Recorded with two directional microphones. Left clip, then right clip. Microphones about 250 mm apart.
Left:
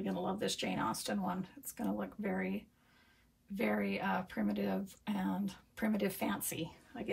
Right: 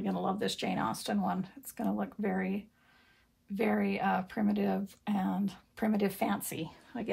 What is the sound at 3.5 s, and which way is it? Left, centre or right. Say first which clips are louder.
Speech: right 4 dB; right.